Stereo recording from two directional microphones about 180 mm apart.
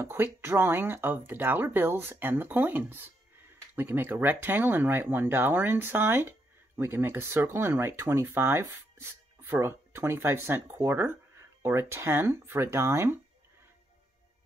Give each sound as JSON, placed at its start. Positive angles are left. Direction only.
{"t": 0.0, "sound": "speech", "side_deg": -10}